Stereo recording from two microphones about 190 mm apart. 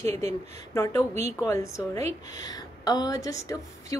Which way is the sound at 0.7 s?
15° left (ahead or behind).